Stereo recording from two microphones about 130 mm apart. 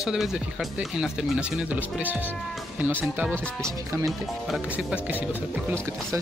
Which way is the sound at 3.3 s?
10° left (ahead or behind).